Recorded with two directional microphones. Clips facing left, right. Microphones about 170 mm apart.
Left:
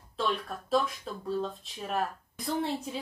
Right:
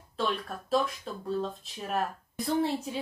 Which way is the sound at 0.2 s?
Centre (ahead or behind).